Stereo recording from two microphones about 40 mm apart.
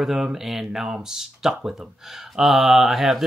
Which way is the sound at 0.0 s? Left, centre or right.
Centre.